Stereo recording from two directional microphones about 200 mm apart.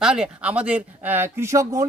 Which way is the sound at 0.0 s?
5° right (ahead or behind).